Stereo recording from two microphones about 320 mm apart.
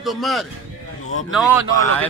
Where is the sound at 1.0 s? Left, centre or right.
Left.